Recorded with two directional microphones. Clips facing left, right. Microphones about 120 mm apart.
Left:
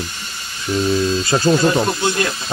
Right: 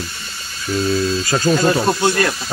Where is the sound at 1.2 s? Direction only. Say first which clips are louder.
Left 1 dB; 25° left (ahead or behind).